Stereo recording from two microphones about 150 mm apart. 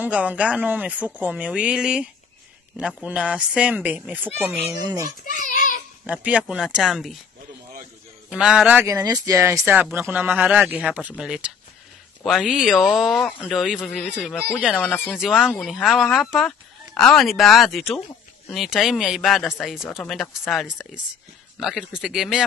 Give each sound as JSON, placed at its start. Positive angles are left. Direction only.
{"t": 0.0, "sound": "speech", "side_deg": -10}
{"t": 4.7, "sound": "speech", "side_deg": -25}
{"t": 5.2, "sound": "a sound", "side_deg": 60}
{"t": 6.0, "sound": "speech", "side_deg": -10}
{"t": 8.3, "sound": "speech", "side_deg": -5}
{"t": 8.8, "sound": "speech", "side_deg": -25}
{"t": 14.8, "sound": "speech", "side_deg": 10}
{"t": 15.1, "sound": "speech", "side_deg": -5}